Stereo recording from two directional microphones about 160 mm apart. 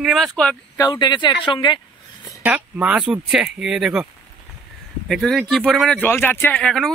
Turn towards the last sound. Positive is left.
turn(degrees=5)  # may be behind; listen again after turning